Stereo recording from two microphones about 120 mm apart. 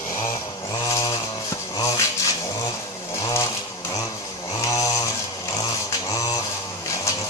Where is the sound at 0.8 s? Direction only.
30° left (ahead or behind).